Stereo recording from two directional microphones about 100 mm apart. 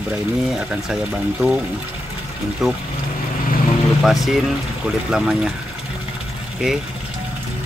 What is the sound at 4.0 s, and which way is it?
Speech, centre (ahead or behind).